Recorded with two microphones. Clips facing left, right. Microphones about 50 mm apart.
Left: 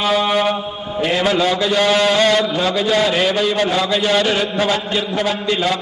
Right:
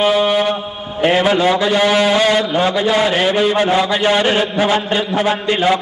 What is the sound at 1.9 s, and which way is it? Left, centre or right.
Mantra, centre.